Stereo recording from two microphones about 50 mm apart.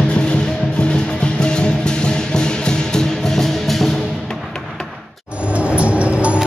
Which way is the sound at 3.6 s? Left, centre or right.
Centre.